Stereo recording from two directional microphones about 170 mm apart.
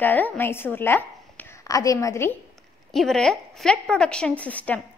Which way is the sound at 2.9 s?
Centre (ahead or behind).